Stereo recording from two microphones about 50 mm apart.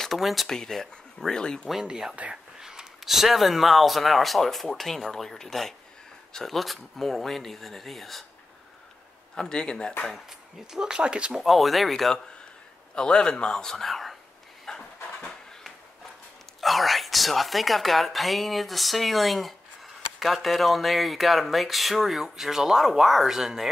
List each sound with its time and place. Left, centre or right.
0.2 s speech: centre
0.5 s speech: centre
1.7 s speech: centre
9.3 s speech: centre
10.7 s speech: centre
11.4 s speech: centre
12.9 s speech: centre
14.7 s dog: centre
16.6 s speech: centre